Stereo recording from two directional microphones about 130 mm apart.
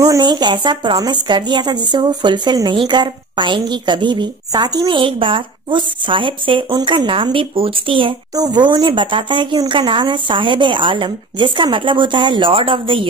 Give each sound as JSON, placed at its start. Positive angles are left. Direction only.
{"t": 0.0, "sound": "speech", "side_deg": -30}